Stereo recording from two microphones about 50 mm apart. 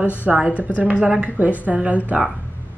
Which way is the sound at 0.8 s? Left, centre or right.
Right.